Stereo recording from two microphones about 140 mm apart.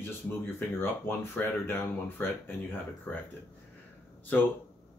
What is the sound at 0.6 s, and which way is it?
Speech, 15° left (ahead or behind).